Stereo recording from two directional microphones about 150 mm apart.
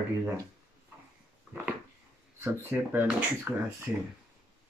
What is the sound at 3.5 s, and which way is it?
Speech, 10° right (ahead or behind).